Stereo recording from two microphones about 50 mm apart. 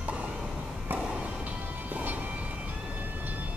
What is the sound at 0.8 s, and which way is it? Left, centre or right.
Music, right.